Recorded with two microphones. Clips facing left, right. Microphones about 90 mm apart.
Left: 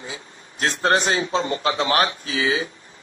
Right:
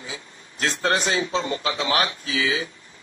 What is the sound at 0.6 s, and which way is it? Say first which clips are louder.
A man's voice: left 3 dB; 40° left (ahead or behind).